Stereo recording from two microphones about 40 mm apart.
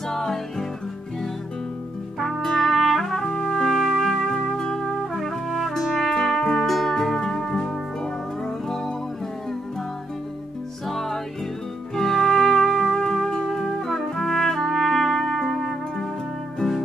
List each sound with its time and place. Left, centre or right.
0.1 s music: centre
2.4 s music: centre
3.6 s music: centre
4.6 s music: centre
10.9 s music: centre
13.3 s trumpet: centre
16.5 s music: centre